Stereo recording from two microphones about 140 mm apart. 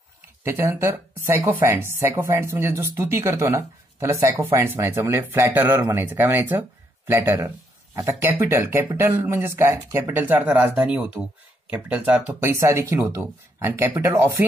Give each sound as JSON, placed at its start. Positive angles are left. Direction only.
{"t": 0.4, "sound": "speech", "side_deg": -15}